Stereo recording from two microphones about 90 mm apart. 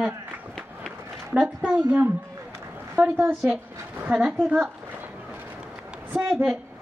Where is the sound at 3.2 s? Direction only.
Centre (ahead or behind).